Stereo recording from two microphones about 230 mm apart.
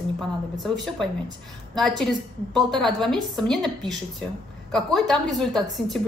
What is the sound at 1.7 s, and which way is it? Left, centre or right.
A woman's voice, centre.